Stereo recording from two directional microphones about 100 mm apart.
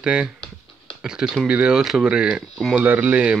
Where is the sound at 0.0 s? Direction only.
10° right (ahead or behind).